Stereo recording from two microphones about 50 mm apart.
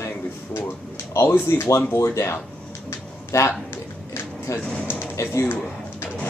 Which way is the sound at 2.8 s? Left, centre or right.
Left.